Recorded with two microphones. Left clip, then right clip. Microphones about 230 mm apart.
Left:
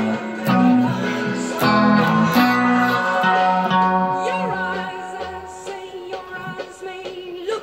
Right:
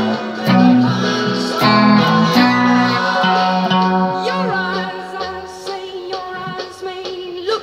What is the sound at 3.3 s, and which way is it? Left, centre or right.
Music, right.